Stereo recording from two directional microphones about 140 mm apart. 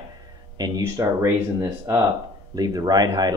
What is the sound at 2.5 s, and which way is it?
Speech, 25° right (ahead or behind).